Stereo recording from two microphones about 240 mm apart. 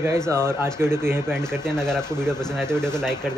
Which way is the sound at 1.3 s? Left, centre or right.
Centre.